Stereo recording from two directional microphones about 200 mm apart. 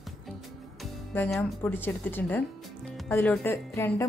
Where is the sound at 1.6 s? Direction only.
10° left (ahead or behind).